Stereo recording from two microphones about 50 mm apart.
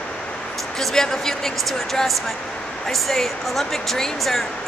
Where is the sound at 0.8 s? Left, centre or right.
Centre.